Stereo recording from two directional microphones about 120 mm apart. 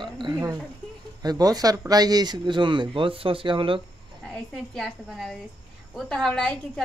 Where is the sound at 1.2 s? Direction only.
35° right (ahead or behind).